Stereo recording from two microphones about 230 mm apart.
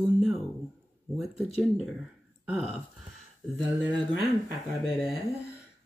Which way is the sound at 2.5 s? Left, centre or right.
Centre.